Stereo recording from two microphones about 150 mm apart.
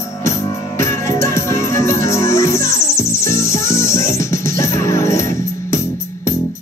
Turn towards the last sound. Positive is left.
turn(degrees=20)  # may be behind; listen again after turning